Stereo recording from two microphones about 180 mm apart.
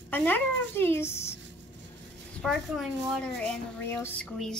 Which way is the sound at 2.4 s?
Centre (ahead or behind).